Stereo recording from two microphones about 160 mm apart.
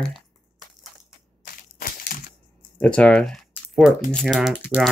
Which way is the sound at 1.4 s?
60° left (ahead or behind).